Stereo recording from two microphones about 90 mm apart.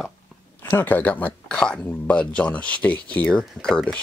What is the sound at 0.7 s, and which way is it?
Speech, 25° left (ahead or behind).